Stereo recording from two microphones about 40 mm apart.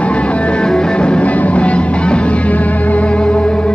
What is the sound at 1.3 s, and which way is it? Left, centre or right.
Music, left.